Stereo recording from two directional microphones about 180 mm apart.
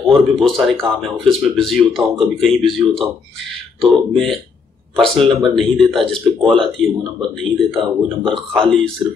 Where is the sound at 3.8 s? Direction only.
Centre (ahead or behind).